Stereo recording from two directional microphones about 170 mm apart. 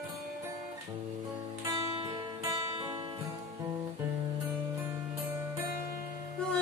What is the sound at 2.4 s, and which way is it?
Music, 20° right (ahead or behind).